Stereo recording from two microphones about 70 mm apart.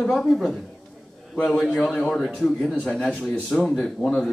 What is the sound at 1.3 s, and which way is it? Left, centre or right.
Speech, centre.